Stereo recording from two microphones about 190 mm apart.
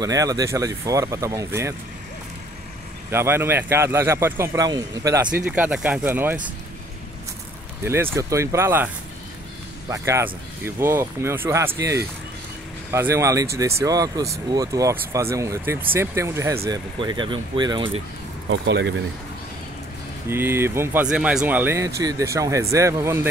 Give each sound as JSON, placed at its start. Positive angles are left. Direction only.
{"t": 0.0, "sound": "speech", "side_deg": -20}
{"t": 3.1, "sound": "speech", "side_deg": -10}
{"t": 5.4, "sound": "speech", "side_deg": -5}
{"t": 7.8, "sound": "speech", "side_deg": -10}
{"t": 18.5, "sound": "speech", "side_deg": -65}
{"t": 20.2, "sound": "speech", "side_deg": -10}